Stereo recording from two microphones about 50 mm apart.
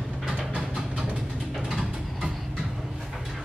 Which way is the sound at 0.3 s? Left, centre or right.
Centre.